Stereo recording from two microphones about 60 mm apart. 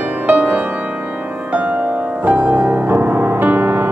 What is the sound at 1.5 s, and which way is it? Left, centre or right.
Music, right.